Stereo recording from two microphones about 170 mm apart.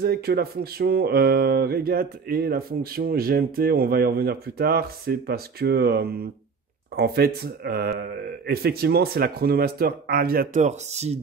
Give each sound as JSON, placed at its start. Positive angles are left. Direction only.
{"t": 0.0, "sound": "speech", "side_deg": -70}